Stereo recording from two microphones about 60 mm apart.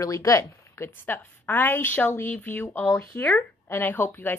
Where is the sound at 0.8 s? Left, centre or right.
Left.